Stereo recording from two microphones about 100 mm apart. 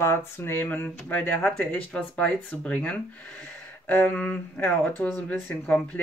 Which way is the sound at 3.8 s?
20° left (ahead or behind).